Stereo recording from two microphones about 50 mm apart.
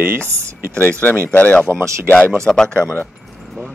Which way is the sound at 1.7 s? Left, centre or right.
Right.